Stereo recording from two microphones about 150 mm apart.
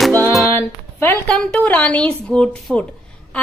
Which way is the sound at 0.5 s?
15° left (ahead or behind).